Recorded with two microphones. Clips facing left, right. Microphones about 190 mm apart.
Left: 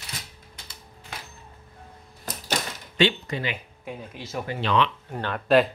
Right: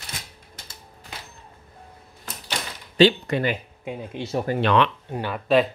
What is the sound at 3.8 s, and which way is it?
Speech, 30° right (ahead or behind).